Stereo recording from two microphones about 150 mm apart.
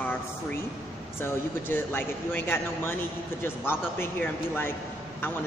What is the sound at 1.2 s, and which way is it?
A man's voice, 15° left (ahead or behind).